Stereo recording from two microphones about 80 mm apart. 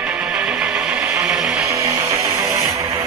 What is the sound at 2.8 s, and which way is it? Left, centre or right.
Vehicle, right.